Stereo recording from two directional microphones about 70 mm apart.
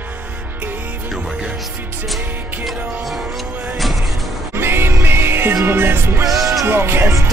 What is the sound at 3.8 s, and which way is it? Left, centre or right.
Music, centre.